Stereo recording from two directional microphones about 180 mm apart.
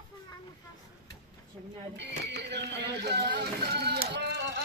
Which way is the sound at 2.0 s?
70° right (ahead or behind).